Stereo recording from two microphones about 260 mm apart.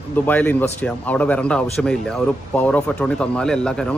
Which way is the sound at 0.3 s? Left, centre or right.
Centre.